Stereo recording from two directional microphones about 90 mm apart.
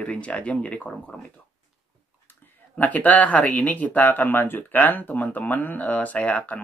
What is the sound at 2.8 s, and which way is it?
Speech, 20° left (ahead or behind).